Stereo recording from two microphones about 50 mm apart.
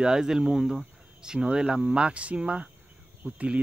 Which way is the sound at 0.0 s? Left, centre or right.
Centre.